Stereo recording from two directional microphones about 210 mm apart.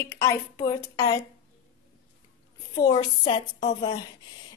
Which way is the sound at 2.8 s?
20° left (ahead or behind).